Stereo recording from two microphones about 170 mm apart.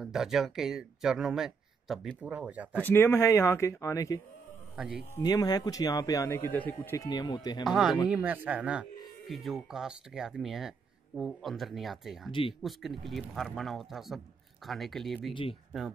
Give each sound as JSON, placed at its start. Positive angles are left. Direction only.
{"t": 0.0, "sound": "speech", "side_deg": -5}
{"t": 2.9, "sound": "speech", "side_deg": 15}
{"t": 4.7, "sound": "speech", "side_deg": -5}
{"t": 5.2, "sound": "speech", "side_deg": 20}
{"t": 7.1, "sound": "speech", "side_deg": 25}
{"t": 7.6, "sound": "speech", "side_deg": 0}
{"t": 12.3, "sound": "speech", "side_deg": 30}
{"t": 12.6, "sound": "speech", "side_deg": 0}